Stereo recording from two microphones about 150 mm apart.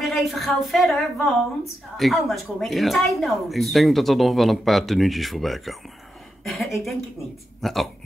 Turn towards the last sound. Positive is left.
turn(degrees=0)  # may be behind; listen again after turning